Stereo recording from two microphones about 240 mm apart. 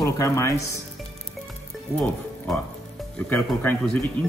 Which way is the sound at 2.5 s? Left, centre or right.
Centre.